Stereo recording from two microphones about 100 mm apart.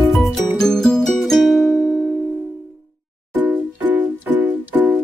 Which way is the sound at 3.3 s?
15° right (ahead or behind).